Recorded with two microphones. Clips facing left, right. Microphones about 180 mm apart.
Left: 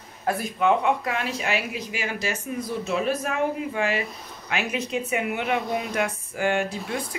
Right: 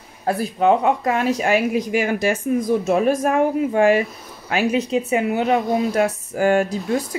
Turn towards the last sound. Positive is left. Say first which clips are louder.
# right 8 dB
turn(degrees=-45)  # may be behind; listen again after turning